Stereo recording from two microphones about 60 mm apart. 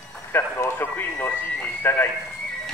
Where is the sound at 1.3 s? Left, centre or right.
Left.